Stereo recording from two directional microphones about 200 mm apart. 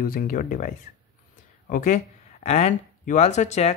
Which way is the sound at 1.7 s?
40° left (ahead or behind).